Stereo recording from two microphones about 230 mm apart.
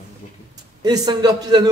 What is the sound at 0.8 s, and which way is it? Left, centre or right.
Speech, centre.